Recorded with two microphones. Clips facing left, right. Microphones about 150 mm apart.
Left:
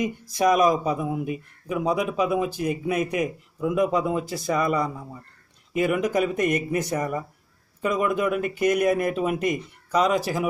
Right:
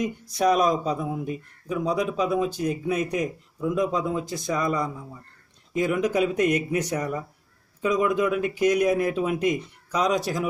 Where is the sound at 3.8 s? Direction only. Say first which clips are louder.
Left 3 dB; 65° left (ahead or behind).